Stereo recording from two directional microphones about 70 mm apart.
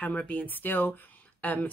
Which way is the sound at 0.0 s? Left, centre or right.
Left.